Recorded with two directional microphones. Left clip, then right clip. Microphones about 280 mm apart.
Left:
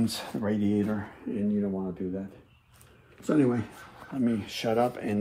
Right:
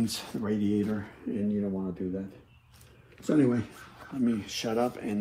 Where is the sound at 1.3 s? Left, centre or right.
Centre.